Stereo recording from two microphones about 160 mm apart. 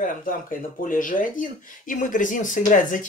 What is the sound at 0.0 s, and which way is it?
Speech, 55° left (ahead or behind).